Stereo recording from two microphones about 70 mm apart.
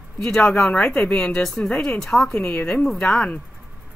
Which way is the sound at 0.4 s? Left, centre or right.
Left.